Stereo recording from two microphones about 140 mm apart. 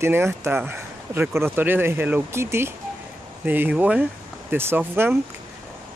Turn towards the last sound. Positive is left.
turn(degrees=-15)  # may be behind; listen again after turning